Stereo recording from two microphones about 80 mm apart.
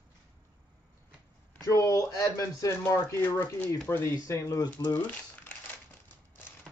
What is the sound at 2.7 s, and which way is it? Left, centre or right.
Speech, left.